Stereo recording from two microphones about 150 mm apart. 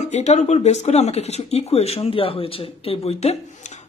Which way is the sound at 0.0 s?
50° left (ahead or behind).